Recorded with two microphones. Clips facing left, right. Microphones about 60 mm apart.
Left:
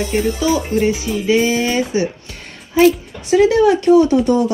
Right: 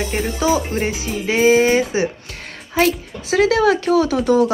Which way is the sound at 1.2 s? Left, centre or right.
Right.